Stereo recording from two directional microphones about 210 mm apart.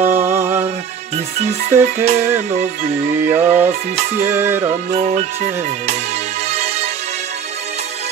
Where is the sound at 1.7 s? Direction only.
10° right (ahead or behind).